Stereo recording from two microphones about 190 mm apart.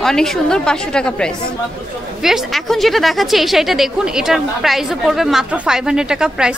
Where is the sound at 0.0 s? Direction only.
Centre (ahead or behind).